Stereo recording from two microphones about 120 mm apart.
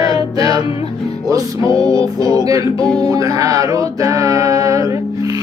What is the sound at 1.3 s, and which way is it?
Speech, 30° right (ahead or behind).